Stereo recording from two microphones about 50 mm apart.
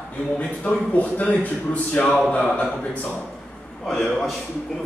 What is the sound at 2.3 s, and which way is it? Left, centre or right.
Speech, left.